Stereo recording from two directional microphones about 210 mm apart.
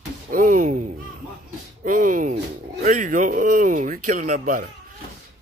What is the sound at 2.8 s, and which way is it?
Speech, 35° right (ahead or behind).